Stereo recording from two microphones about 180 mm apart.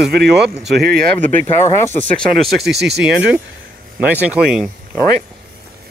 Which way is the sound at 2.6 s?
65° right (ahead or behind).